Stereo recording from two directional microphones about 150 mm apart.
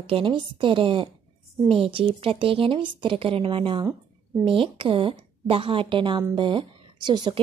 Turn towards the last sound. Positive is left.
turn(degrees=-30)  # may be behind; listen again after turning